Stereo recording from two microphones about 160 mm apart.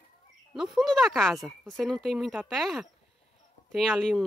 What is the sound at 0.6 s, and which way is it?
Speech, centre (ahead or behind).